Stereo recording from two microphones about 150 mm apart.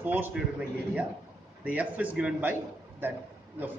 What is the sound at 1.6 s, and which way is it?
Speech, 10° right (ahead or behind).